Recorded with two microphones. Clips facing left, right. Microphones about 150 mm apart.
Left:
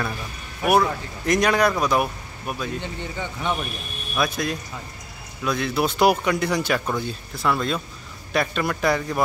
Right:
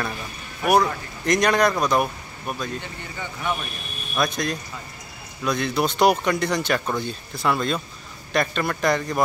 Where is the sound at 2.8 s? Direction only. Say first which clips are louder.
Left 4 dB; 20° left (ahead or behind).